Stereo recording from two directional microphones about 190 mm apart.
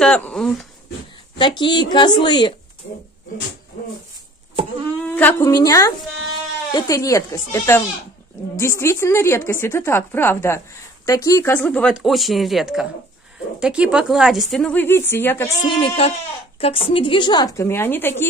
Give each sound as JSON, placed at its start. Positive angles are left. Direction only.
{"t": 0.0, "sound": "a woman's voice", "side_deg": 5}
{"t": 1.6, "sound": "a woman's voice", "side_deg": 25}
{"t": 5.0, "sound": "a woman's voice", "side_deg": 10}
{"t": 15.6, "sound": "a woman's voice", "side_deg": 30}